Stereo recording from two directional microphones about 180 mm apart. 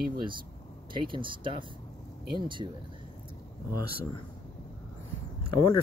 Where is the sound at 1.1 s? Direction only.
25° right (ahead or behind).